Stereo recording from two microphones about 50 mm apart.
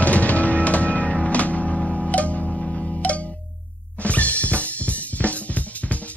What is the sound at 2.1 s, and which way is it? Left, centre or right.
Music, left.